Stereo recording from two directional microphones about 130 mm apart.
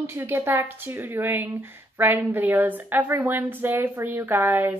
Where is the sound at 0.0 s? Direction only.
15° right (ahead or behind).